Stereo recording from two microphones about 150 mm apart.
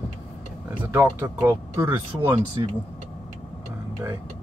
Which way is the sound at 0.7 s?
15° right (ahead or behind).